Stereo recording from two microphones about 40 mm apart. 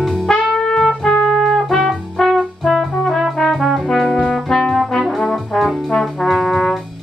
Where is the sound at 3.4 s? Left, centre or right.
Centre.